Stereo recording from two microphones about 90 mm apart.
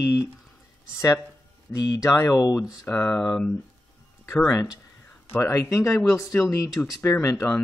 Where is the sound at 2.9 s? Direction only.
20° left (ahead or behind).